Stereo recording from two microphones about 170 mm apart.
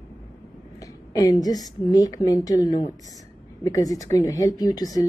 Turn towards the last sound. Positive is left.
turn(degrees=20)  # may be behind; listen again after turning